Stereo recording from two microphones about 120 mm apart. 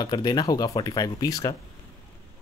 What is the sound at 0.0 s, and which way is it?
Speech, 35° left (ahead or behind).